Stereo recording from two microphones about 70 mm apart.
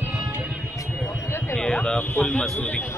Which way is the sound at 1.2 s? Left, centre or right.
Left.